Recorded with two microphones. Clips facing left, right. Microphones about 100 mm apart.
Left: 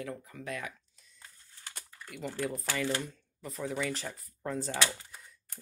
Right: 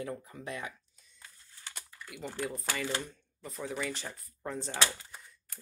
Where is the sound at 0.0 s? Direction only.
25° right (ahead or behind).